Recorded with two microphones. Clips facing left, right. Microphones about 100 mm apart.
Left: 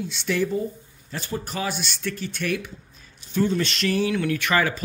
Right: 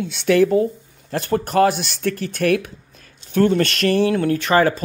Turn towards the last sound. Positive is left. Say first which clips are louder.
# right 6 dB
turn(degrees=-35)  # may be behind; listen again after turning